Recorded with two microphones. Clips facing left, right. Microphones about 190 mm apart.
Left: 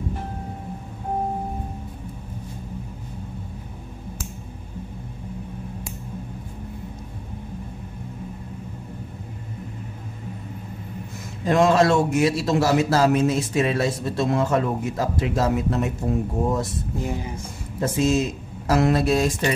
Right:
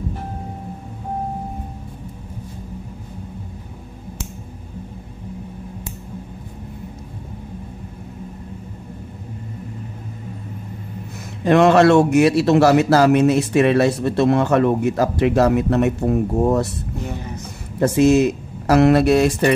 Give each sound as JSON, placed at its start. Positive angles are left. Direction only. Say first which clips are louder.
{"t": 11.4, "sound": "a man's voice", "louder": "right 5 dB", "side_deg": -70}
{"t": 17.7, "sound": "a man's voice", "louder": "right 7 dB", "side_deg": -65}